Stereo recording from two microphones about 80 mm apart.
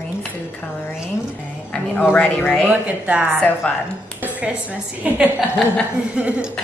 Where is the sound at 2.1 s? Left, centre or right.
Centre.